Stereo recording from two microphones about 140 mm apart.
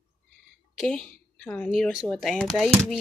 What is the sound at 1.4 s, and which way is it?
Speech, 10° left (ahead or behind).